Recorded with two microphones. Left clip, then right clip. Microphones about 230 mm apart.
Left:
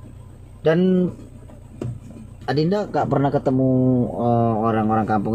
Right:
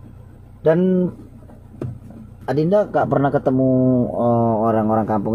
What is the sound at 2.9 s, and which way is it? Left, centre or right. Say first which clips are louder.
Speech: right 3 dB; right.